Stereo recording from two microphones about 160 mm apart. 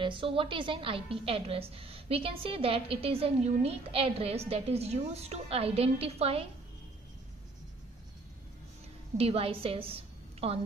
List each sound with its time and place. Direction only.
0.0 s a woman's voice: 30° right (ahead or behind)
9.1 s a woman's voice: 40° right (ahead or behind)